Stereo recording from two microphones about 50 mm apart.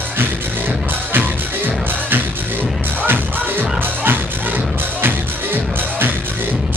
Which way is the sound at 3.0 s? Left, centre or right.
Right.